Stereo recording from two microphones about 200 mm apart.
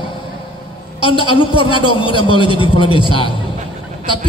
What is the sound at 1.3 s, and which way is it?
A man's voice, 25° left (ahead or behind).